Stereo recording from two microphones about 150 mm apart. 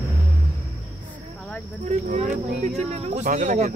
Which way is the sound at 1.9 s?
50° right (ahead or behind).